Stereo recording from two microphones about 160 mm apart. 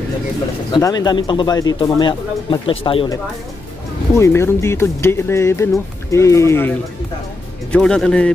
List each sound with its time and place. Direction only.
0.7 s speech: 25° left (ahead or behind)
4.2 s speech: 15° left (ahead or behind)
7.7 s speech: 5° left (ahead or behind)